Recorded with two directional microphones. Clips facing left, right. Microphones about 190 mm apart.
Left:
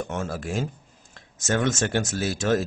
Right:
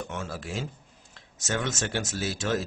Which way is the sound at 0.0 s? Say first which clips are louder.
Left 5 dB; 50° left (ahead or behind).